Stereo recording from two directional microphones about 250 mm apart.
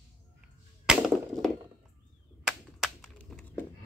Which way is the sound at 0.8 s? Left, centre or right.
Centre.